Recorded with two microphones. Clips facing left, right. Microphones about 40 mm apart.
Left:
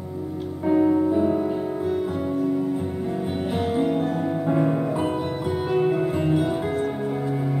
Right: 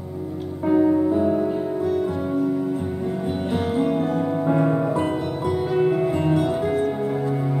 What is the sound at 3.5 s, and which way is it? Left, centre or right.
Music, centre.